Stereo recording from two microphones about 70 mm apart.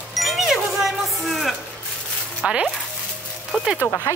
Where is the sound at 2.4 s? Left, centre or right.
Centre.